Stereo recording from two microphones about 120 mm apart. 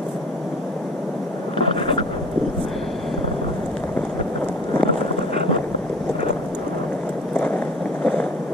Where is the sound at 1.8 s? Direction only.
45° left (ahead or behind).